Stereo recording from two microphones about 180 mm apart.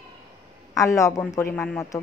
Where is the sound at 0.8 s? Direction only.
15° left (ahead or behind).